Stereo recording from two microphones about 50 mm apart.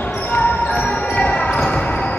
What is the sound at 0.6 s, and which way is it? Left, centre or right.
Basketball bounce, left.